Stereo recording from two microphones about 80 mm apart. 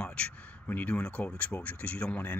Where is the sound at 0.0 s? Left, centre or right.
Centre.